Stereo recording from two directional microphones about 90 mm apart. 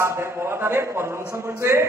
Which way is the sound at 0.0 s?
30° right (ahead or behind).